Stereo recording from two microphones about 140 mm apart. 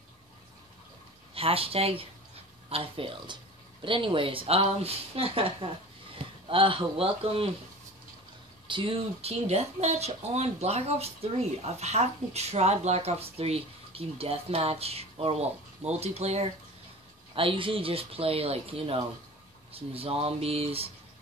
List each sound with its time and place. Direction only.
1.3 s speech: 45° right (ahead or behind)
8.6 s speech: 35° right (ahead or behind)
17.4 s speech: 40° right (ahead or behind)